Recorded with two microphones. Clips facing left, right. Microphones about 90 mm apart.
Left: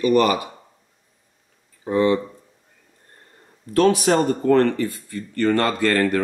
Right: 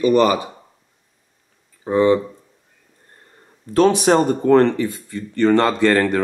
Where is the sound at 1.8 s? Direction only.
25° right (ahead or behind).